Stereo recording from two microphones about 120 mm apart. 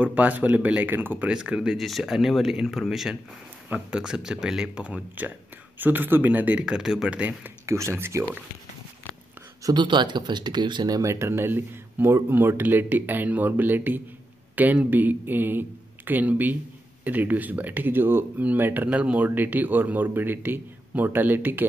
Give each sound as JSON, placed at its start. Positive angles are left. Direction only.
{"t": 0.0, "sound": "speech", "side_deg": -10}
{"t": 9.6, "sound": "a sound", "side_deg": -30}
{"t": 9.8, "sound": "speech", "side_deg": -40}